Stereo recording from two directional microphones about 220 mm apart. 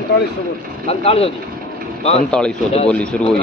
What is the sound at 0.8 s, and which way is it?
Speech, 25° left (ahead or behind).